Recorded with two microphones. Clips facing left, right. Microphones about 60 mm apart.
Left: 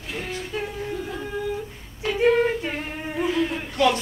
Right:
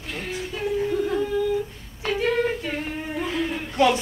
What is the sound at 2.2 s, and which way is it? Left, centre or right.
A woman's voice, centre.